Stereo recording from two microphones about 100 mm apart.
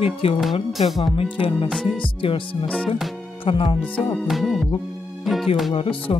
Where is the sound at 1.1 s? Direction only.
60° left (ahead or behind).